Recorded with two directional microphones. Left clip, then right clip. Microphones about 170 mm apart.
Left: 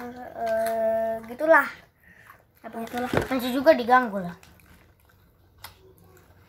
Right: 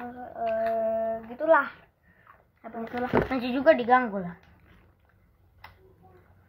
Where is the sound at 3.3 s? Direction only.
15° right (ahead or behind).